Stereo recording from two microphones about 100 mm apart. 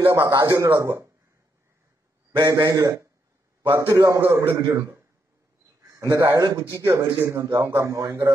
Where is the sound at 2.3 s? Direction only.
40° right (ahead or behind).